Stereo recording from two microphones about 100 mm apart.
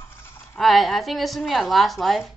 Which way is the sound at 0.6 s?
Centre (ahead or behind).